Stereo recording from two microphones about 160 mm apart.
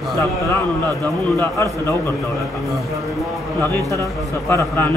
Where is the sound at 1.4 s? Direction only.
20° left (ahead or behind).